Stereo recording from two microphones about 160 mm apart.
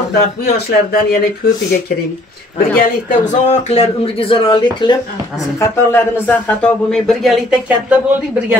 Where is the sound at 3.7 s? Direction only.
40° left (ahead or behind).